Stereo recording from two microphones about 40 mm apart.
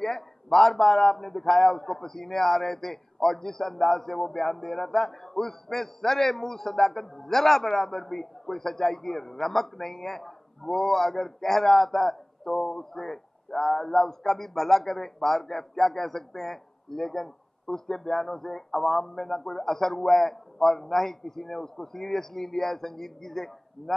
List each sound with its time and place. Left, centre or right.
0.0 s a man's voice: centre